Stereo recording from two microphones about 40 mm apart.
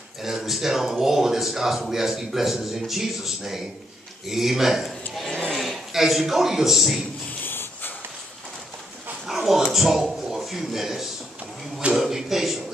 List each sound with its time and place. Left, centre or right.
0.2 s a man's voice: centre
7.4 s snort: left
9.2 s dog: centre
9.8 s speech: centre